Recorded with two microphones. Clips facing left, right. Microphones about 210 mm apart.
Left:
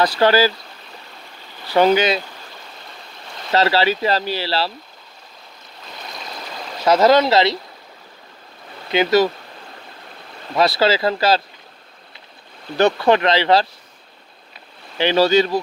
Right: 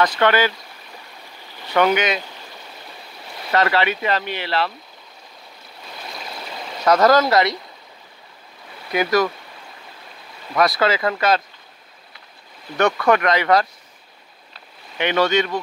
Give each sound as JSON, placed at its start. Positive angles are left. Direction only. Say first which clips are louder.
{"t": 0.2, "sound": "speech", "louder": "left 4 dB", "side_deg": 30}
{"t": 1.7, "sound": "speech", "louder": "left 3 dB", "side_deg": 30}
{"t": 3.5, "sound": "speech", "louder": "left 2 dB", "side_deg": 30}
{"t": 6.8, "sound": "speech", "louder": "left 1 dB", "side_deg": 25}
{"t": 8.9, "sound": "speech", "louder": "left 3 dB", "side_deg": 25}
{"t": 10.5, "sound": "speech", "louder": "left 2 dB", "side_deg": 30}
{"t": 12.7, "sound": "speech", "louder": "left 2 dB", "side_deg": 30}
{"t": 15.0, "sound": "speech", "louder": "left 4 dB", "side_deg": 30}